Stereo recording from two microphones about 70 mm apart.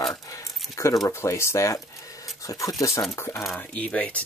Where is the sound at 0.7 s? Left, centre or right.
Left.